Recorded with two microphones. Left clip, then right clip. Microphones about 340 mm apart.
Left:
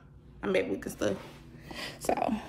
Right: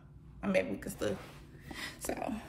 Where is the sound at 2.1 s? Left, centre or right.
Left.